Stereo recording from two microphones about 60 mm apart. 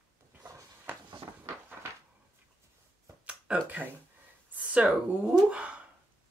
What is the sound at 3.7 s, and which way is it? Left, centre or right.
Speech, right.